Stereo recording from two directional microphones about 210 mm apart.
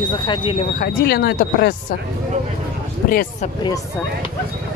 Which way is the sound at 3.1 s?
45° left (ahead or behind).